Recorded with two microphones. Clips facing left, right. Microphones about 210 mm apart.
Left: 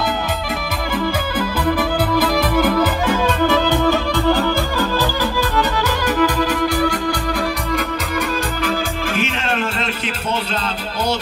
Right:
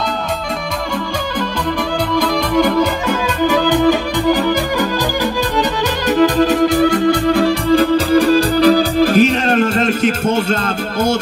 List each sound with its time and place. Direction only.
2.1 s music: 5° left (ahead or behind)
3.4 s music: 15° right (ahead or behind)
6.0 s music: 20° right (ahead or behind); by 10.6 s 45° right (ahead or behind)